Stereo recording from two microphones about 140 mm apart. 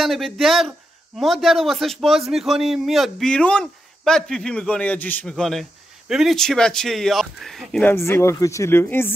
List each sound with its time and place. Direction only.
0.0 s a man's voice: centre (ahead or behind)
7.8 s speech: 20° left (ahead or behind)